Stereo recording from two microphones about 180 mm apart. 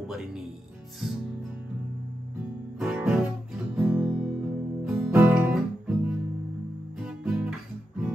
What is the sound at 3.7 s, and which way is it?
Guitar, 5° right (ahead or behind).